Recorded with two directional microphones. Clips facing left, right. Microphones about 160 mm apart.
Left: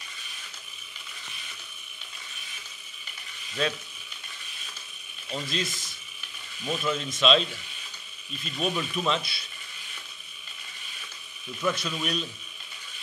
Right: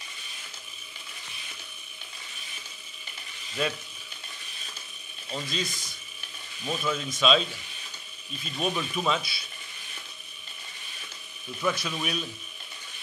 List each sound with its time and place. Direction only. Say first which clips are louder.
3.6 s speech: left 1 dB; 5° right (ahead or behind)
5.3 s speech: left 1 dB; centre (ahead or behind)
8.5 s speech: even; centre (ahead or behind)
11.6 s speech: even; centre (ahead or behind)